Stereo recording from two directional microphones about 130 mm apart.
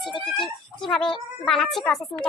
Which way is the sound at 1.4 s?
Centre (ahead or behind).